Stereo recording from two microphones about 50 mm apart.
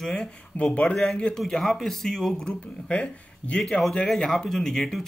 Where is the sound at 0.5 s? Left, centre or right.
Left.